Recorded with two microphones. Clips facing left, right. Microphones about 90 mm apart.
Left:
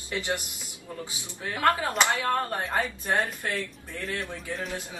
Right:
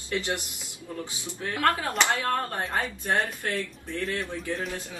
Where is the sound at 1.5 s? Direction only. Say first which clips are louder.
Left 1 dB; 25° left (ahead or behind).